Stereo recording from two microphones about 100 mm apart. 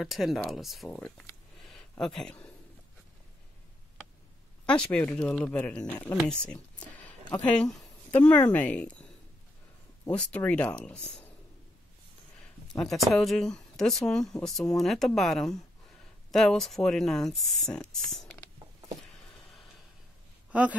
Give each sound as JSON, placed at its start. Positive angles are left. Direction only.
{"t": 0.0, "sound": "speech", "side_deg": 0}
{"t": 0.8, "sound": "speech", "side_deg": 15}
{"t": 1.6, "sound": "a sound", "side_deg": 5}
{"t": 4.6, "sound": "speech", "side_deg": 10}
{"t": 10.1, "sound": "speech", "side_deg": 10}
{"t": 12.6, "sound": "speech", "side_deg": 5}